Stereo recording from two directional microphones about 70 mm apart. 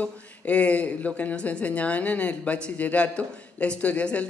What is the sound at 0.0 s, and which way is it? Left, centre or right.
Speech, centre.